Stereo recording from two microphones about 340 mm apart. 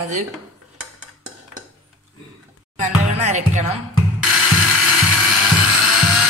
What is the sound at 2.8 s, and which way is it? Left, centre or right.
Speech, right.